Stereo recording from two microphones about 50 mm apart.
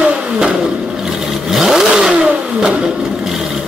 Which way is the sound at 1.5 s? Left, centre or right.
Centre.